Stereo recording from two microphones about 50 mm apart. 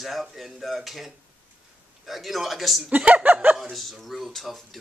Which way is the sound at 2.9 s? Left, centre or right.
Right.